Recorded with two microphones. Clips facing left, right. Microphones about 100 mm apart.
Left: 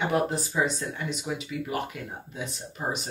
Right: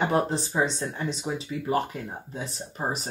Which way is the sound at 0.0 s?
30° right (ahead or behind).